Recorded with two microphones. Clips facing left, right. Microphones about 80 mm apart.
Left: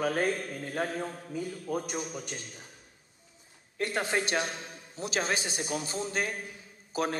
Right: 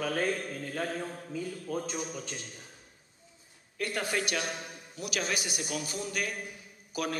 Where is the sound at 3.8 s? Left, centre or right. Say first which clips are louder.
Left 2 dB; left.